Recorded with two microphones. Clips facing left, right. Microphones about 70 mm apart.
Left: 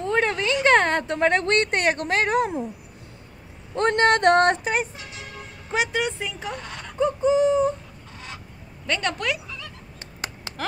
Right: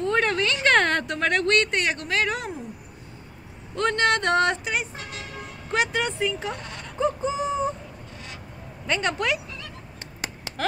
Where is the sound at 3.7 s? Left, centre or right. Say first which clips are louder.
Left 3 dB; left.